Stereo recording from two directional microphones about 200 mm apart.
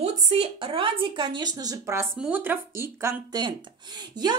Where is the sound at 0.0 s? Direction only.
30° right (ahead or behind).